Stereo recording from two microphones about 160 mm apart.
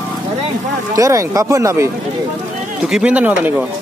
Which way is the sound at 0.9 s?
20° right (ahead or behind).